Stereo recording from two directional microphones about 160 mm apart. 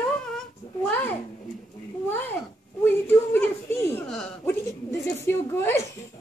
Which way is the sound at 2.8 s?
10° left (ahead or behind).